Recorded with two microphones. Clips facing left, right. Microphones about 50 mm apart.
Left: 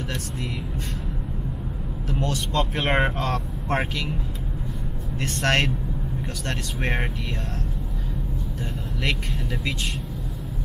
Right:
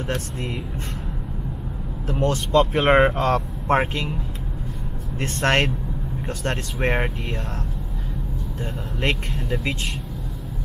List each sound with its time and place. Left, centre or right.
2.0 s speech: right
5.2 s speech: right